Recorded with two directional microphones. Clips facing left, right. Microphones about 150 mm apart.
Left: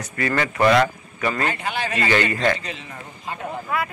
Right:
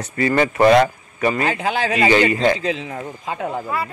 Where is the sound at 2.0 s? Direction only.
20° right (ahead or behind).